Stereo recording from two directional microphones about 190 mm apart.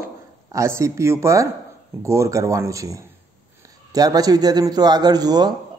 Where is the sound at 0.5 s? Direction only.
15° right (ahead or behind).